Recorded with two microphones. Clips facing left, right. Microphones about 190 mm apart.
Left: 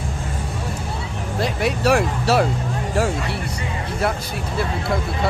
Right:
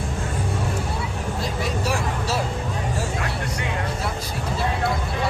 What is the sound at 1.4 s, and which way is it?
Vehicle, 70° left (ahead or behind).